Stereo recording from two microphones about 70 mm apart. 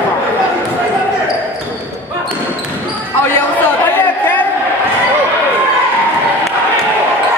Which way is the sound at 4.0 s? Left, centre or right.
Left.